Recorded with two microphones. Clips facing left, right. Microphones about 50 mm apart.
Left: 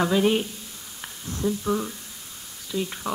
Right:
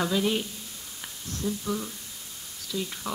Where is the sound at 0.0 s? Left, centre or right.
Left.